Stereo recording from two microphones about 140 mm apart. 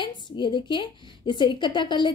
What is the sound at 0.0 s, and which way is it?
A woman's voice, 35° left (ahead or behind).